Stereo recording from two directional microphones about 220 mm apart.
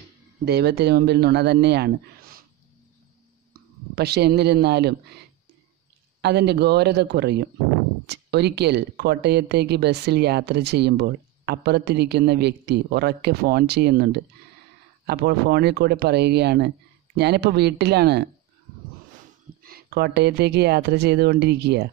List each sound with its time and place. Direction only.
0.5 s speech: 45° right (ahead or behind)
3.9 s speech: 45° right (ahead or behind)
6.2 s speech: 50° right (ahead or behind)
19.6 s speech: 45° right (ahead or behind)